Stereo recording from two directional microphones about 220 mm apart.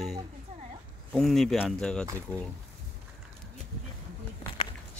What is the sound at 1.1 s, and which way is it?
Speech, centre (ahead or behind).